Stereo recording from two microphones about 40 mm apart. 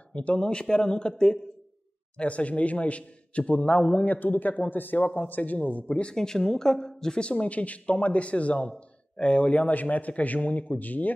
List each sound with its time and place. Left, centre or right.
0.1 s a man's voice: left
2.1 s a man's voice: left
4.0 s a man's voice: left
6.1 s speech: centre
7.2 s a man's voice: left